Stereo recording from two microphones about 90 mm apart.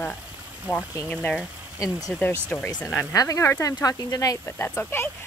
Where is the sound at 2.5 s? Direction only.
20° left (ahead or behind).